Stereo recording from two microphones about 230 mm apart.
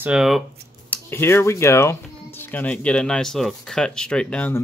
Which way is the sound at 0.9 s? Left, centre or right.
Centre.